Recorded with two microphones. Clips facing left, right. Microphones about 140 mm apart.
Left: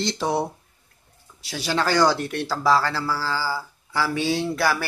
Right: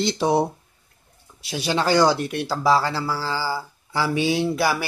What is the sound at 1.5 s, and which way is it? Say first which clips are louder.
A man's voice: right 2 dB; 20° right (ahead or behind).